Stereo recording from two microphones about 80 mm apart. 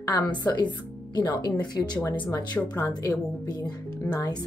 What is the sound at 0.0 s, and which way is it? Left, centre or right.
Speech, left.